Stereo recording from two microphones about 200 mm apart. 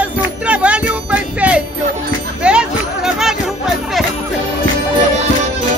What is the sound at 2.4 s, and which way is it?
Jingle bell, 5° right (ahead or behind).